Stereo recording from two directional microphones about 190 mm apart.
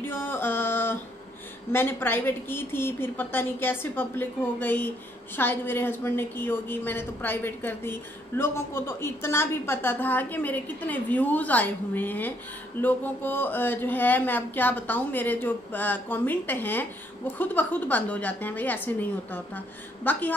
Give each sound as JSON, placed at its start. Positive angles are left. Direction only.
{"t": 0.0, "sound": "mantra", "side_deg": 10}
{"t": 1.7, "sound": "a woman's voice", "side_deg": 10}